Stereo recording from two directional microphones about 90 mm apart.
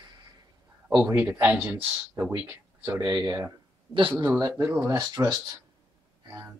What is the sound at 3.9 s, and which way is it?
Speech, 65° right (ahead or behind).